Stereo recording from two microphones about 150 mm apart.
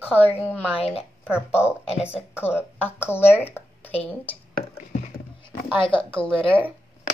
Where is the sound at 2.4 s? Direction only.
15° left (ahead or behind).